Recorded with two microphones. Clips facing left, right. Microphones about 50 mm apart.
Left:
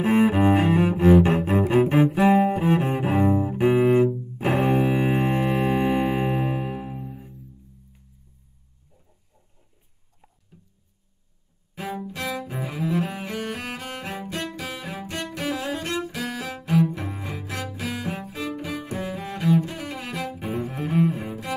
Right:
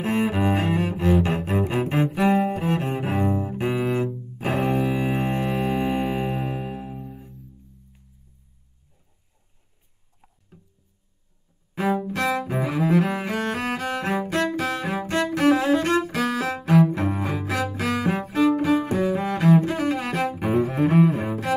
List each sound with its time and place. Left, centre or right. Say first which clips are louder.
0.0 s cello: left 4 dB; centre
4.1 s double bass: left 2 dB; centre
11.7 s bowed string instrument: right 8 dB; right
12.3 s cello: right 6 dB; right
16.9 s cello: right 7 dB; right
17.4 s cello: right 6 dB; right
21.2 s cello: right 6 dB; right